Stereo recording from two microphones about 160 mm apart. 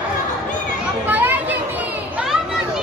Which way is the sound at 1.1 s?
10° right (ahead or behind).